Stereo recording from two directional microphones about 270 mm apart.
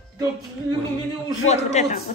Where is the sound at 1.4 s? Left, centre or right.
Left.